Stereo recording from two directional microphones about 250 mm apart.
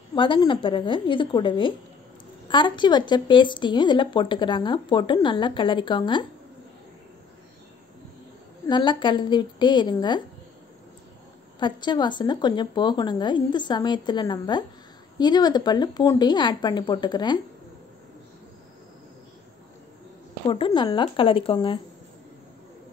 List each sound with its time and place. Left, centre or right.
0.1 s a woman's voice: centre
8.6 s a woman's voice: centre
11.6 s a woman's voice: centre
20.4 s a woman's voice: left